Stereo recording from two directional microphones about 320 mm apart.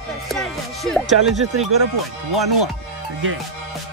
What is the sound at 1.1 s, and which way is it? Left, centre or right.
Speech, right.